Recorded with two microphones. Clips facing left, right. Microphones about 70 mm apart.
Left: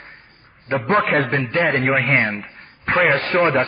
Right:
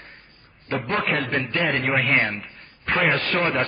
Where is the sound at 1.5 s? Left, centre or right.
Left.